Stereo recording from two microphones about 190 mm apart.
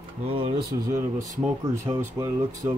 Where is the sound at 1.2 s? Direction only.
15° right (ahead or behind).